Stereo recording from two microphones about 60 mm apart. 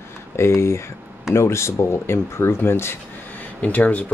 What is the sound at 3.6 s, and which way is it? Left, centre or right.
Speech, left.